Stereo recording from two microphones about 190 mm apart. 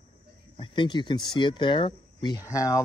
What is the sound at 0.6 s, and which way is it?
Speech, 25° left (ahead or behind).